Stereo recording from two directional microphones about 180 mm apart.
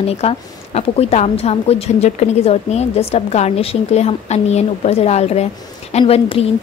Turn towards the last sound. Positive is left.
turn(degrees=30)  # may be behind; listen again after turning